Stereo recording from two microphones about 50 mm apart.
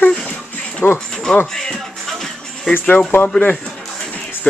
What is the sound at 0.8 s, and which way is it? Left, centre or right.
Speech, left.